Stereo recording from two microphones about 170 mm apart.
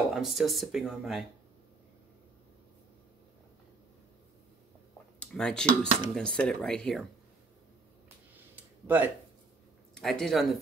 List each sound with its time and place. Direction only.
0.1 s speech: centre (ahead or behind)
5.2 s speech: 5° left (ahead or behind)
8.4 s a sound: 10° right (ahead or behind)
9.9 s speech: 5° left (ahead or behind)